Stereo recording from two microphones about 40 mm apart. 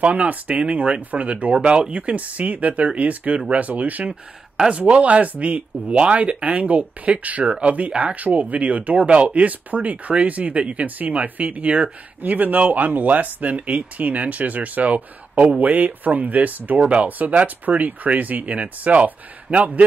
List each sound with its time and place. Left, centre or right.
0.0 s speech: right
2.0 s speech: right
7.4 s speech: right
7.9 s speech: right
12.2 s speech: right